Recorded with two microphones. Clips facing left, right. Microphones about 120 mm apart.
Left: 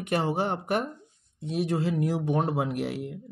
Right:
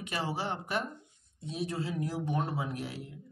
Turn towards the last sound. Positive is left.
turn(degrees=65)  # may be behind; listen again after turning